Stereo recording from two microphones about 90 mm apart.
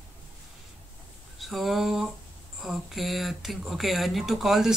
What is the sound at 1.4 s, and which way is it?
Speech, centre (ahead or behind).